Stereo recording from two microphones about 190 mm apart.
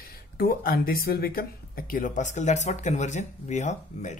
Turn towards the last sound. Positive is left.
turn(degrees=40)  # may be behind; listen again after turning